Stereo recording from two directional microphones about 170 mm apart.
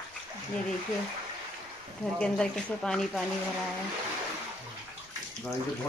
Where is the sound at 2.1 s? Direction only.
5° left (ahead or behind).